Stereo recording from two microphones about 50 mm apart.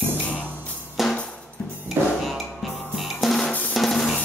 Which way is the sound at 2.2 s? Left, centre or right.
Centre.